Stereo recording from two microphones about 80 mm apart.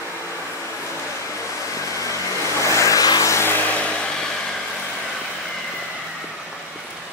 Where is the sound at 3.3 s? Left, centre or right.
Left.